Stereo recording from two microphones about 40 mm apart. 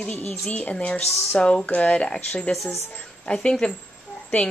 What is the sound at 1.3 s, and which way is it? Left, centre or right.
Speech, centre.